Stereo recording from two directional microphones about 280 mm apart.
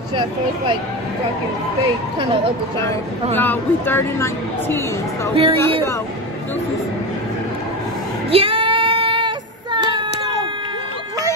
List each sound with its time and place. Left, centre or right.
3.3 s a woman's voice: centre
5.3 s speech: centre
8.3 s child singing: centre